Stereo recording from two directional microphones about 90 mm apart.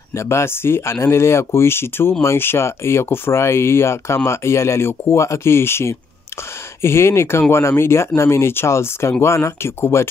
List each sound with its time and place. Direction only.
0.1 s speech: 30° left (ahead or behind)